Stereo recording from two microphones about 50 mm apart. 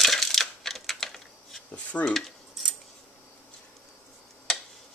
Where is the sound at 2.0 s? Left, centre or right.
Centre.